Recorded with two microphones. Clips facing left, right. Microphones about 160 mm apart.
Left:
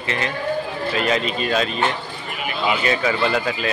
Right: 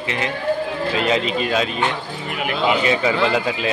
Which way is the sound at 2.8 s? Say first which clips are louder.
Right 2 dB; 20° right (ahead or behind).